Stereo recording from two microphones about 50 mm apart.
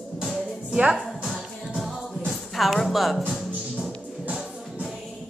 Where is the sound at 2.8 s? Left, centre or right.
Centre.